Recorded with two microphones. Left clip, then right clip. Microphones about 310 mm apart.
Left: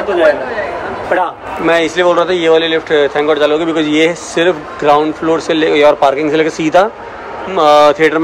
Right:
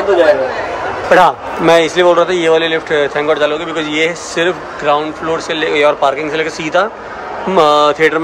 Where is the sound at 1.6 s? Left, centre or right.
Centre.